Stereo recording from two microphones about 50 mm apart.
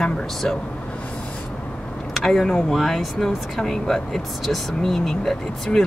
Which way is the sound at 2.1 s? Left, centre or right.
Centre.